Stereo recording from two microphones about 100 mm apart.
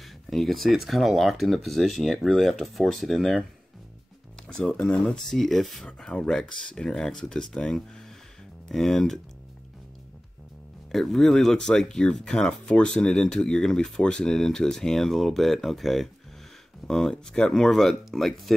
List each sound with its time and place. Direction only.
0.0 s speech: centre (ahead or behind)
4.5 s speech: 10° left (ahead or behind)
10.9 s speech: centre (ahead or behind)